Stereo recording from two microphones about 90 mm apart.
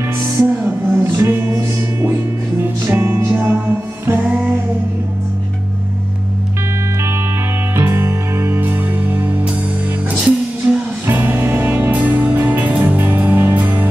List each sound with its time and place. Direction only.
0.4 s music: 25° right (ahead or behind)
7.8 s music: 30° right (ahead or behind)
10.1 s music: 5° right (ahead or behind)
11.1 s music: 25° right (ahead or behind)